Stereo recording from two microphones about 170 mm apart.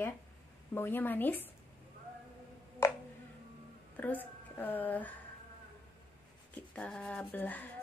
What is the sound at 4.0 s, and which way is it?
Speech, 10° left (ahead or behind).